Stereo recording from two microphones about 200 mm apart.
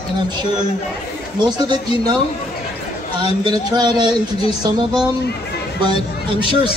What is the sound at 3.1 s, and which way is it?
A man's voice, 20° right (ahead or behind).